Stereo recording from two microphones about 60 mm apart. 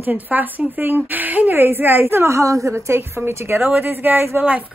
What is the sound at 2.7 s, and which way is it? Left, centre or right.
A woman's voice, right.